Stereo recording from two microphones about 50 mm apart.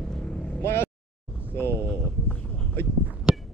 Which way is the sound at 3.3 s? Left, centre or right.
Centre.